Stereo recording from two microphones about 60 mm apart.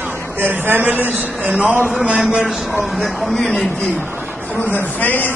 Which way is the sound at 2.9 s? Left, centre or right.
Centre.